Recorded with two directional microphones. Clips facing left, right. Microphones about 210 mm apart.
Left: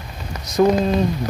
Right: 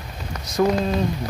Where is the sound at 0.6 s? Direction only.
25° left (ahead or behind).